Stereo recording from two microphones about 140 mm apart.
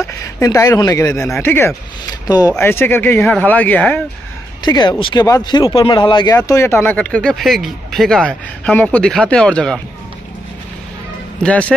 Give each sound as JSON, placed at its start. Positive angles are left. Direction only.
{"t": 0.0, "sound": "speech", "side_deg": 20}
{"t": 2.2, "sound": "speech", "side_deg": 25}
{"t": 2.6, "sound": "speech", "side_deg": 15}
{"t": 4.6, "sound": "speech", "side_deg": 30}
{"t": 6.4, "sound": "speech", "side_deg": 20}
{"t": 11.4, "sound": "speech", "side_deg": 10}